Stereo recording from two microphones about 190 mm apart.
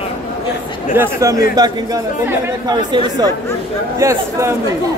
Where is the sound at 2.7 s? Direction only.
25° right (ahead or behind).